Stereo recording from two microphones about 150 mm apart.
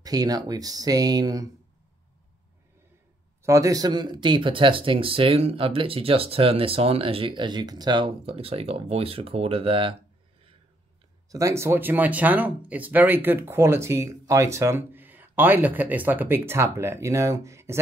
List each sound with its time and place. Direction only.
0.0 s speech: 25° right (ahead or behind)
3.4 s speech: 20° right (ahead or behind); by 9.9 s 35° right (ahead or behind)
11.2 s speech: 20° right (ahead or behind)